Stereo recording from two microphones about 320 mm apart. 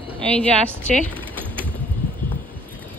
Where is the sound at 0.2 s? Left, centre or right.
Centre.